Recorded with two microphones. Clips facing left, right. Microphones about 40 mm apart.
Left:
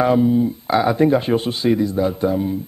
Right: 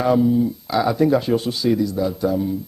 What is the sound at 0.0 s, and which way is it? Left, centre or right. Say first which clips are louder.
Speech: left 1 dB; left.